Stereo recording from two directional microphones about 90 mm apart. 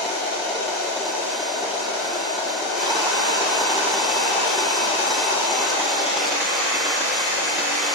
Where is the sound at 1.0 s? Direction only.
Centre (ahead or behind).